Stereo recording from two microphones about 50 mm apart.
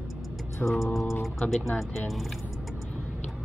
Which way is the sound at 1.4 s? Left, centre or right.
Centre.